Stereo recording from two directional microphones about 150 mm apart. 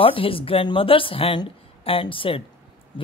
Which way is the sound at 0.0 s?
35° left (ahead or behind).